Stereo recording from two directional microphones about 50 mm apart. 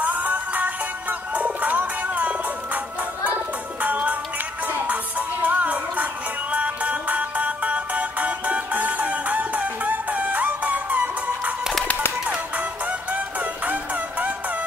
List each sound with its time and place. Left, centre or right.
0.0 s music: right
3.8 s music: right
5.4 s music: right
13.1 s music: right